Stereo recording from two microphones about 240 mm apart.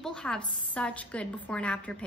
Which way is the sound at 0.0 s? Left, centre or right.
Centre.